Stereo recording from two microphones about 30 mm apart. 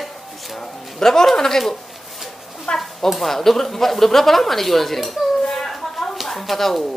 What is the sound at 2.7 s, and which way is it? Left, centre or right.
Speech, left.